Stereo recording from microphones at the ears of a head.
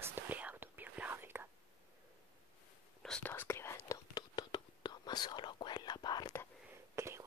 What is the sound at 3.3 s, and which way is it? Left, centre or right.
Whispering, left.